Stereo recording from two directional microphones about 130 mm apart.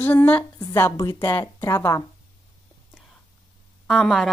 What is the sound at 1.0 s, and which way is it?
Speech, 25° left (ahead or behind).